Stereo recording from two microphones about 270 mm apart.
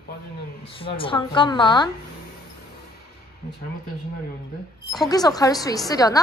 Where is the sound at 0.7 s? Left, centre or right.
Centre.